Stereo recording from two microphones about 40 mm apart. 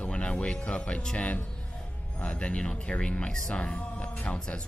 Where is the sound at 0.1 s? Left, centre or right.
Left.